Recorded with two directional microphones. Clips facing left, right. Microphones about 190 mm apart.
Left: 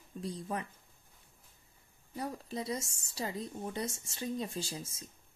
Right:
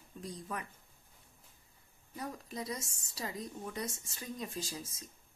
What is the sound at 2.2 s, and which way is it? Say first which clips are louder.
A woman's voice: left 3 dB; 30° left (ahead or behind).